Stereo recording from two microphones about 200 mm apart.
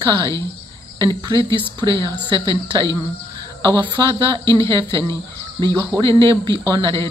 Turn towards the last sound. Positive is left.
turn(degrees=-25)  # may be behind; listen again after turning